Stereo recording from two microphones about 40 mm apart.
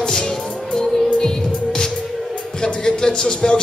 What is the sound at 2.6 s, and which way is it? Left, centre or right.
Speech, centre.